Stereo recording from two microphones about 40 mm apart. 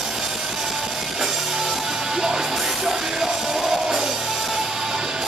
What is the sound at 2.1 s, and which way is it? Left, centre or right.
Music, centre.